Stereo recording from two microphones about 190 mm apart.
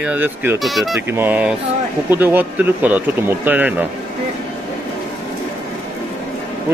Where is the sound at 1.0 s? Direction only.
10° right (ahead or behind).